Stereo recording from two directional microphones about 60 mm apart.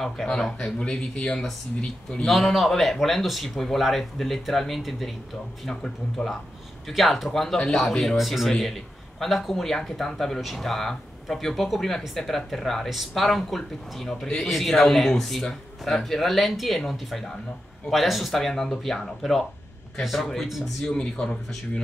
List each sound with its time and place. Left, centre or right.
0.3 s speech: centre
2.2 s a man's voice: centre
20.9 s speech: centre